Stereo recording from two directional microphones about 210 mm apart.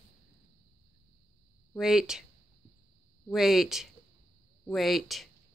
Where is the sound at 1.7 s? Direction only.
Centre (ahead or behind).